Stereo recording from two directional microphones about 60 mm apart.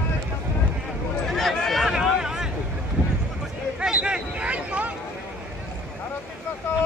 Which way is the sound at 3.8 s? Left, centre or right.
Centre.